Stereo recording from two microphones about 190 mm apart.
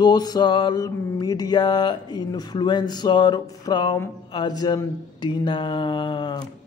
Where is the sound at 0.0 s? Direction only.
20° left (ahead or behind).